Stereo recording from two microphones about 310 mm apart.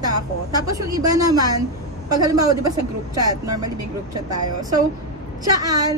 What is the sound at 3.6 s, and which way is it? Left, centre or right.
Speech, right.